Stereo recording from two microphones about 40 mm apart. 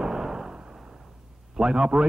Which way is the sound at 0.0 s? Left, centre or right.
Centre.